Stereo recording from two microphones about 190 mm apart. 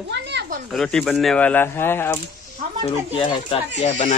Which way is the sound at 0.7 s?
5° left (ahead or behind).